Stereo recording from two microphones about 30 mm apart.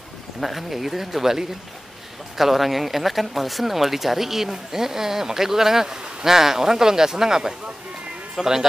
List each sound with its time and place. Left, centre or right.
0.4 s speech: centre